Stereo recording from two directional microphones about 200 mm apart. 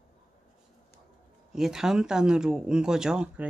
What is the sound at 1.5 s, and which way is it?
Speech, centre (ahead or behind).